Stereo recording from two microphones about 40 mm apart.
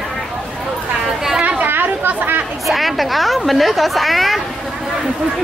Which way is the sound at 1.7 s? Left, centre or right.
Right.